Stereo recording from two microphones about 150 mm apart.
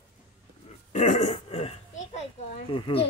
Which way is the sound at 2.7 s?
40° left (ahead or behind).